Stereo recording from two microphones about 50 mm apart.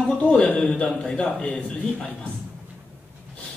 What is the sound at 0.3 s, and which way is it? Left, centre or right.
A man's voice, centre.